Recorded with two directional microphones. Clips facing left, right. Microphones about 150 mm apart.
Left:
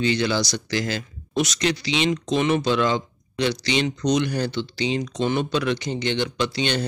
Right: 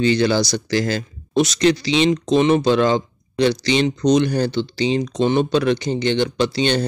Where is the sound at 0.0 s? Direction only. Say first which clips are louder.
Right 5 dB; 35° right (ahead or behind).